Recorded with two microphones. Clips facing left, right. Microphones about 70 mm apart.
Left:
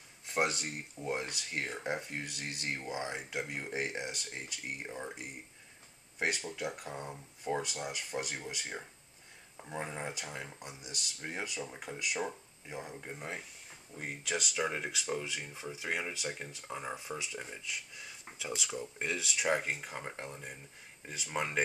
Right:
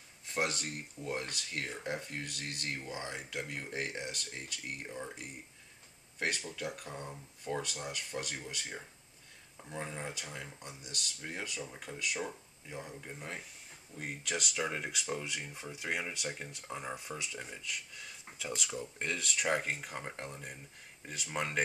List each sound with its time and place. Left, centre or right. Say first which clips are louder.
0.3 s speech: left 2 dB; centre
13.9 s speech: left 1 dB; centre